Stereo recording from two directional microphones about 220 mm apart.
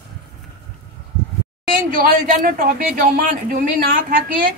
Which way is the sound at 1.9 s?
40° right (ahead or behind).